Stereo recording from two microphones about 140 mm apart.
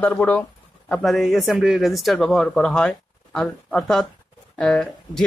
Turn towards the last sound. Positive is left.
turn(degrees=5)  # may be behind; listen again after turning